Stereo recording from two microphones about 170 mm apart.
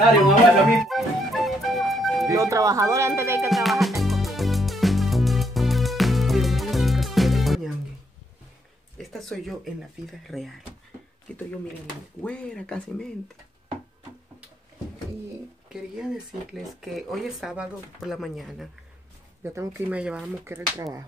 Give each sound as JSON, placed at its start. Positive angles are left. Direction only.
{"t": 0.7, "sound": "music", "side_deg": 0}
{"t": 2.2, "sound": "speech", "side_deg": -20}
{"t": 3.4, "sound": "music", "side_deg": 0}
{"t": 8.9, "sound": "speech", "side_deg": 0}
{"t": 12.2, "sound": "speech", "side_deg": 5}
{"t": 15.7, "sound": "speech", "side_deg": -5}
{"t": 19.4, "sound": "speech", "side_deg": -15}
{"t": 20.5, "sound": "speech", "side_deg": -20}